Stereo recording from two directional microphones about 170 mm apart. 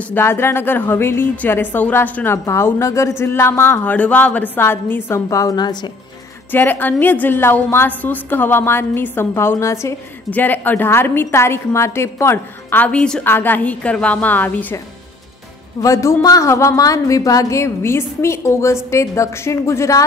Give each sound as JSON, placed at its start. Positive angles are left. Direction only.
{"t": 0.1, "sound": "a woman's voice", "side_deg": 15}
{"t": 6.5, "sound": "a woman's voice", "side_deg": 10}
{"t": 15.8, "sound": "a woman's voice", "side_deg": 15}